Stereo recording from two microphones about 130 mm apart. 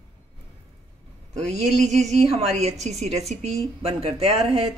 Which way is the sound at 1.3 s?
60° right (ahead or behind).